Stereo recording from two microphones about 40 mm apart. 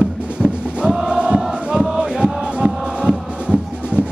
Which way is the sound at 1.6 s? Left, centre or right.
Right.